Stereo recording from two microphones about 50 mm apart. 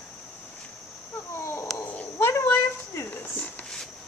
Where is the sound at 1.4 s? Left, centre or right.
Left.